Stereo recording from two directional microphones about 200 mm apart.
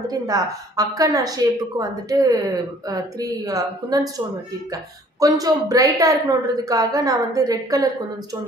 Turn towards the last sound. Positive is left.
turn(degrees=-15)  # may be behind; listen again after turning